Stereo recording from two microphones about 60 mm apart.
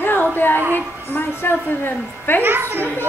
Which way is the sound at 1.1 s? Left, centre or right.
Left.